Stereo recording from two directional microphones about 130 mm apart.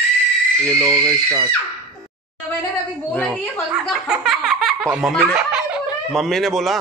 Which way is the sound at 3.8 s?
5° right (ahead or behind).